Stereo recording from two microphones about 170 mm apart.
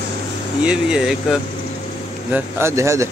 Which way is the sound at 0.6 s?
5° right (ahead or behind).